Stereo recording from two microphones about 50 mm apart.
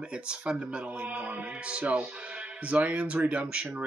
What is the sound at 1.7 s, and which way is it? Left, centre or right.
Speech, right.